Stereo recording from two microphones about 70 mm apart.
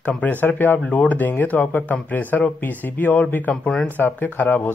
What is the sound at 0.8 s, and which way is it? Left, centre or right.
Speech, centre.